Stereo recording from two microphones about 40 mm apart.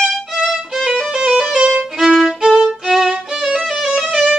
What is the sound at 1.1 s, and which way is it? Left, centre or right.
Music, right.